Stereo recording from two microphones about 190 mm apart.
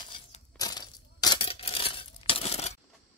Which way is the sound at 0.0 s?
25° left (ahead or behind).